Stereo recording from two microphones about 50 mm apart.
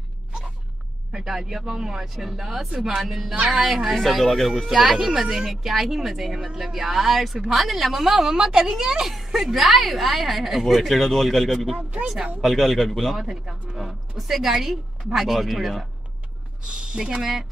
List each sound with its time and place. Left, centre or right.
1.1 s a woman's voice: centre
16.6 s speech: centre
17.2 s speech: centre